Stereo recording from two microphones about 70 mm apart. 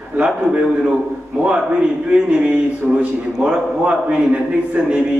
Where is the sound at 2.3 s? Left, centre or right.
Centre.